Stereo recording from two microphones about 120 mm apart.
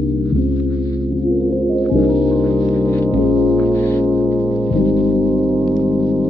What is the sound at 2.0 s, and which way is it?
Music, centre (ahead or behind).